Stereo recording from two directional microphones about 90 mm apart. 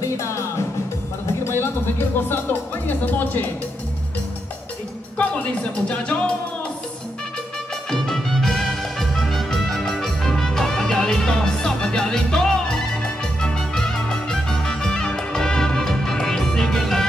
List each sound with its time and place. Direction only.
0.0 s music: 35° left (ahead or behind)
2.9 s speech: 20° left (ahead or behind)
5.1 s speech: 15° left (ahead or behind)
7.9 s music: 5° left (ahead or behind)